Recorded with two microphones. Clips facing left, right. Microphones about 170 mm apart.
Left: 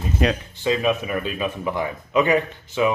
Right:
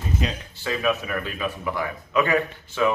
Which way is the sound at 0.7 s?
20° left (ahead or behind).